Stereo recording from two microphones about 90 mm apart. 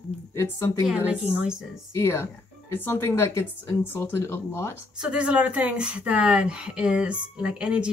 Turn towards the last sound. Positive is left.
turn(degrees=-10)  # may be behind; listen again after turning